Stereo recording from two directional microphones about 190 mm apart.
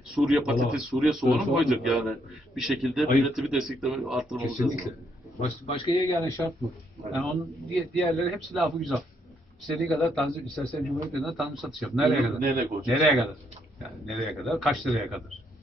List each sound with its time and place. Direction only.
0.1 s speech: centre (ahead or behind)
5.7 s a man's voice: 30° left (ahead or behind)
6.1 s speech: 15° left (ahead or behind)
7.2 s speech: centre (ahead or behind)